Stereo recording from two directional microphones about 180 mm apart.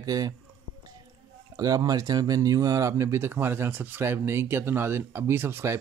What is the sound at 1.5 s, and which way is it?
Speech, 20° right (ahead or behind).